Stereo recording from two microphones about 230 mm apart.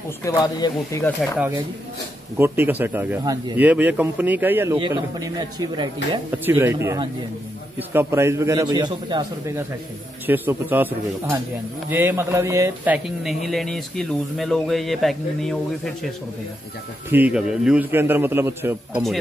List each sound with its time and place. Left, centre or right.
0.3 s speech: centre
2.3 s a man's voice: centre
17.1 s a man's voice: centre